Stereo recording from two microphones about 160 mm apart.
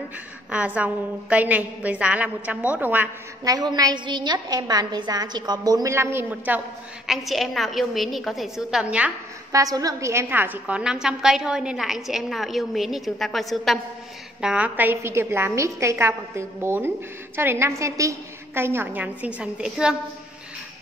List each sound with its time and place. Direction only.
0.5 s a woman's voice: 10° right (ahead or behind)
3.4 s a woman's voice: 25° right (ahead or behind)
7.1 s a woman's voice: centre (ahead or behind)
9.5 s a woman's voice: 20° right (ahead or behind); by 20.0 s 5° right (ahead or behind)